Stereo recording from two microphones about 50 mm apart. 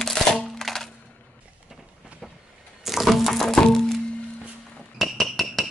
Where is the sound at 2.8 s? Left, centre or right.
Centre.